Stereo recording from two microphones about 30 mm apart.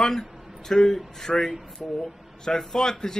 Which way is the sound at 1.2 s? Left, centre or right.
Centre.